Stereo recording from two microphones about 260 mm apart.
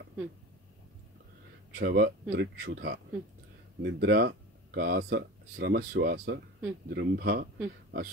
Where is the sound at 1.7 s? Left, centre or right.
Right.